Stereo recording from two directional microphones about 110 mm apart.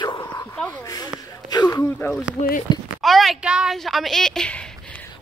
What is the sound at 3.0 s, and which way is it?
Speech, centre (ahead or behind).